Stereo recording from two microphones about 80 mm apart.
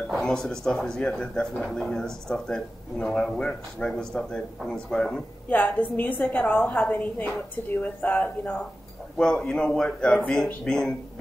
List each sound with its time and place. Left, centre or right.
0.1 s speech: centre
5.5 s a woman's voice: left
9.2 s speech: centre